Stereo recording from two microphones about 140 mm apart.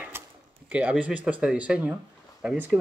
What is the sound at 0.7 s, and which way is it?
Speech, 10° right (ahead or behind).